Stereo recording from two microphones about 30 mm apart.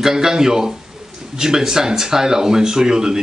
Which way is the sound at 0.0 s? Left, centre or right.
Centre.